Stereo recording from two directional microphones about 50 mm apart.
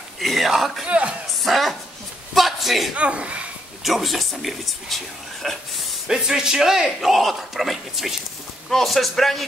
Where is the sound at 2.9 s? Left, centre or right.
Right.